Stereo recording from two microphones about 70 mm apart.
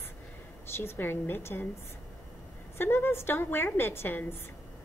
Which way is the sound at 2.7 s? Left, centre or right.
Left.